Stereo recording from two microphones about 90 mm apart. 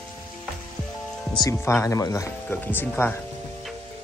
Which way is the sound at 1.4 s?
35° left (ahead or behind).